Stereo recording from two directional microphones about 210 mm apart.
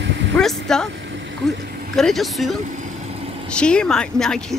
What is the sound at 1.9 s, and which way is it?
Speech, centre (ahead or behind).